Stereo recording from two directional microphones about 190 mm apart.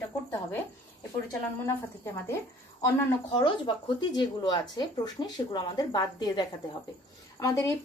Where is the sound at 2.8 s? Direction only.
25° left (ahead or behind).